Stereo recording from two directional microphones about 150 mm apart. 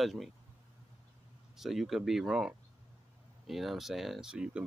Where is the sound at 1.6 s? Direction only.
Centre (ahead or behind).